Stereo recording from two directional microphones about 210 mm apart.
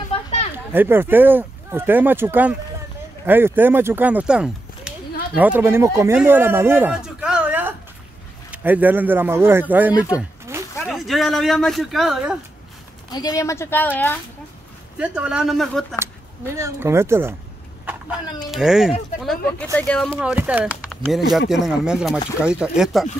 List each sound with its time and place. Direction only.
0.1 s children playing: 30° left (ahead or behind)
0.7 s speech: 10° right (ahead or behind)
10.1 s a sound: 15° right (ahead or behind)
10.9 s speech: centre (ahead or behind)
13.1 s a woman's voice: 15° left (ahead or behind)
15.0 s speech: 5° right (ahead or behind)
16.5 s speech: 15° right (ahead or behind)
18.5 s speech: centre (ahead or behind)
20.2 s speech: 5° right (ahead or behind)